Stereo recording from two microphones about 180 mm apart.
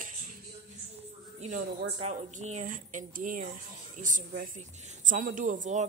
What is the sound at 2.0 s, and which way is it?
Speech, 40° right (ahead or behind).